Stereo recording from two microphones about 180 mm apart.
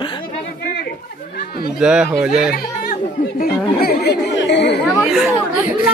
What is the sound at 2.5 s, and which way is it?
Speech, 55° left (ahead or behind).